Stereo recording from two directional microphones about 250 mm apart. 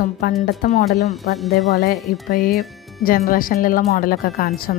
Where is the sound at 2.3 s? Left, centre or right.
Left.